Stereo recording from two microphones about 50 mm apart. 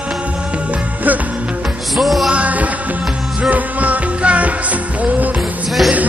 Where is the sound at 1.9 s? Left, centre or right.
Centre.